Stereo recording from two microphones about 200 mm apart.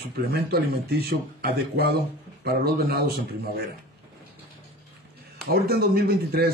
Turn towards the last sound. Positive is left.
turn(degrees=-50)  # may be behind; listen again after turning